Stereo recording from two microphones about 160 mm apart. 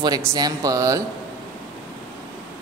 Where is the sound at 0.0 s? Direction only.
20° right (ahead or behind).